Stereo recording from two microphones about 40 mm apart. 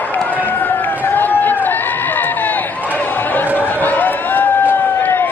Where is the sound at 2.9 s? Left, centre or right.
Left.